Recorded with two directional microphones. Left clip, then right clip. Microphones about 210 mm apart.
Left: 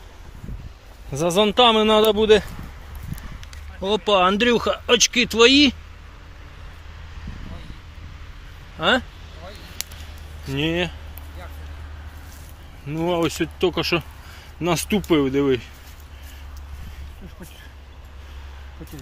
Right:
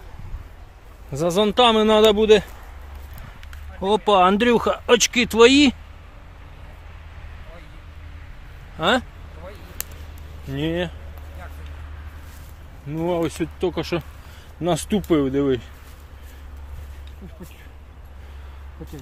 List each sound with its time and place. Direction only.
1.1 s speech: 5° right (ahead or behind)
8.7 s speech: 15° right (ahead or behind)
10.5 s speech: 10° left (ahead or behind)
12.8 s speech: 10° left (ahead or behind)
14.6 s speech: centre (ahead or behind)